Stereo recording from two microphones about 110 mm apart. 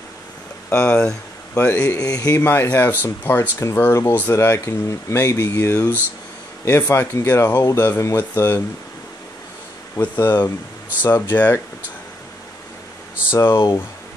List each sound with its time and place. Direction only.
0.7 s speech: 10° left (ahead or behind)
1.5 s speech: 20° left (ahead or behind)
2.0 s speech: 35° left (ahead or behind)
2.4 s speech: 20° left (ahead or behind)
9.9 s speech: 20° left (ahead or behind)
13.3 s speech: 20° left (ahead or behind)